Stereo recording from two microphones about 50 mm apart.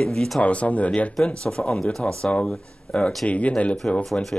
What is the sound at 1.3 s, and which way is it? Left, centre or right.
Speech, centre.